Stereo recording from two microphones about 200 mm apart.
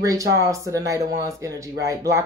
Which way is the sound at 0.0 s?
15° right (ahead or behind).